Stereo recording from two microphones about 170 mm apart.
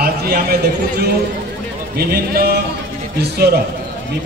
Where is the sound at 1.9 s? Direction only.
65° right (ahead or behind).